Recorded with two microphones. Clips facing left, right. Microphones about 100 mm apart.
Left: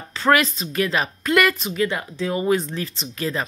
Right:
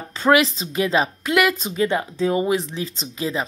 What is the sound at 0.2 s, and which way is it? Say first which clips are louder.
Speech: right 2 dB; 10° right (ahead or behind).